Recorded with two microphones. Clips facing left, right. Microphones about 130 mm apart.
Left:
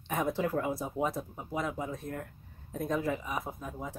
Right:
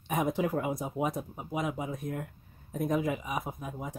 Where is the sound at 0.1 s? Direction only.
15° right (ahead or behind).